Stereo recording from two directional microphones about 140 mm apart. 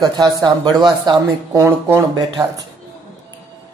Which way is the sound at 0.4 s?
30° right (ahead or behind).